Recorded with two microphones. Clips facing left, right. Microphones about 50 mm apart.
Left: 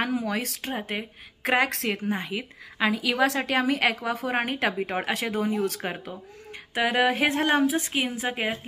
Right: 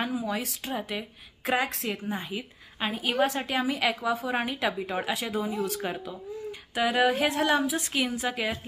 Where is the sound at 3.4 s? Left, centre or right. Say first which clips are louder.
Left 3 dB; left.